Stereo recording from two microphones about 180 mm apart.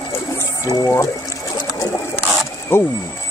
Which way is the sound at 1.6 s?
20° left (ahead or behind).